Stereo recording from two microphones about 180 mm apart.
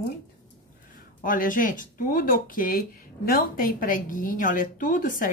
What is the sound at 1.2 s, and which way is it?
Speech, 50° left (ahead or behind).